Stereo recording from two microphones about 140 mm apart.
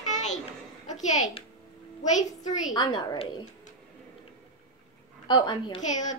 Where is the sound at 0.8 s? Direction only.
60° left (ahead or behind).